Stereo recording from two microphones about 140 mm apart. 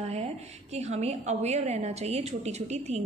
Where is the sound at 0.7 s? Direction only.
50° right (ahead or behind).